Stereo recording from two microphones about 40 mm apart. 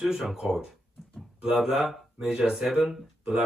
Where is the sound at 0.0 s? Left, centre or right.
Centre.